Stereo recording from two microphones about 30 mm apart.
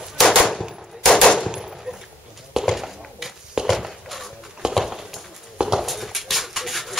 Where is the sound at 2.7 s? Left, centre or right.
Centre.